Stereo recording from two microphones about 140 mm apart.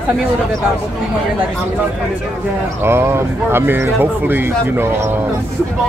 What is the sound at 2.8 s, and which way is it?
Speech, 15° right (ahead or behind).